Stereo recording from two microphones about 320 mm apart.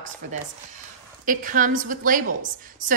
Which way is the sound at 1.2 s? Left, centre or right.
Right.